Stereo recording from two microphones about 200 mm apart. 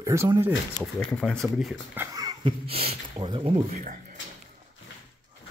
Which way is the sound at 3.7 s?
40° right (ahead or behind).